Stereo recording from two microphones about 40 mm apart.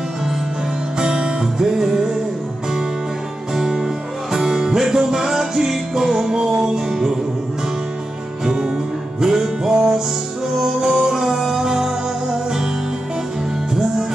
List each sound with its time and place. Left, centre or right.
0.9 s music: right
3.5 s music: centre
8.5 s music: centre